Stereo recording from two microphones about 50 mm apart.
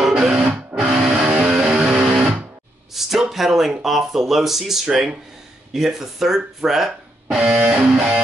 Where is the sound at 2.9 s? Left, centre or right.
Centre.